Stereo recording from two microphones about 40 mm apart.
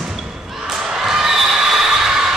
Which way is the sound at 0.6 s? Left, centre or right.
Centre.